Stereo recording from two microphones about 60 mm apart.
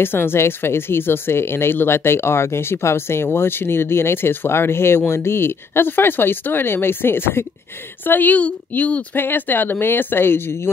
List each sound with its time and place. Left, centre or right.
0.0 s a woman's voice: left
9.1 s speech: left